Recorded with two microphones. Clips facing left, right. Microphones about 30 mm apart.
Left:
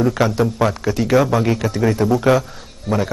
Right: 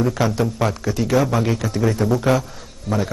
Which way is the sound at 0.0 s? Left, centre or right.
Centre.